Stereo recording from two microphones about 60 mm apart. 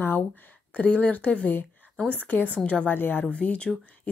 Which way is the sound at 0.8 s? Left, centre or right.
Left.